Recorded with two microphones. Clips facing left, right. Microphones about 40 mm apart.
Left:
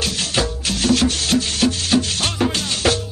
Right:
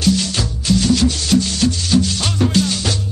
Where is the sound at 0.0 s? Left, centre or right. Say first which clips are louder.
Right 3 dB; left.